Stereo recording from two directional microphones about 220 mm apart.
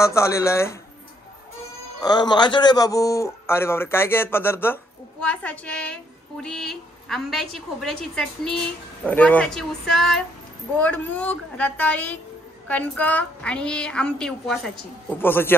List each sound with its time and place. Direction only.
0.0 s a man's voice: 15° left (ahead or behind)
2.0 s a man's voice: 20° left (ahead or behind)